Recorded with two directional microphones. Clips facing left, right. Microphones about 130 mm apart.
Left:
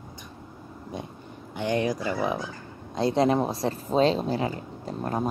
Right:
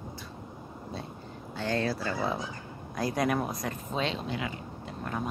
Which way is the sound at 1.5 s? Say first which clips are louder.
Left 4 dB; 15° left (ahead or behind).